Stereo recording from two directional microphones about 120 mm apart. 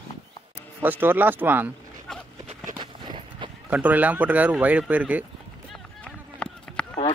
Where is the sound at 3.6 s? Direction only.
15° right (ahead or behind).